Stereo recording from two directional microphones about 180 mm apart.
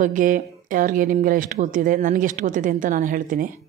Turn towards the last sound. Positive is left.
turn(degrees=-50)  # may be behind; listen again after turning